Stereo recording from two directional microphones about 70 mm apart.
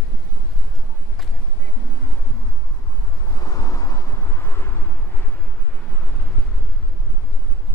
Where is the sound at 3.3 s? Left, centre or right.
Left.